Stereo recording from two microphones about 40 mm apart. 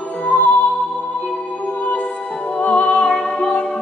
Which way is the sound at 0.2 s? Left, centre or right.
Left.